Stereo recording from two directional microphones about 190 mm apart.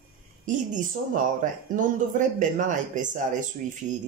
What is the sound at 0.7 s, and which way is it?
Speech, 45° right (ahead or behind).